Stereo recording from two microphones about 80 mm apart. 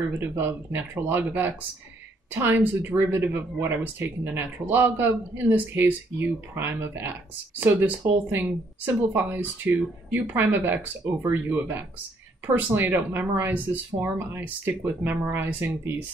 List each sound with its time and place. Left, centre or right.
0.2 s speech: right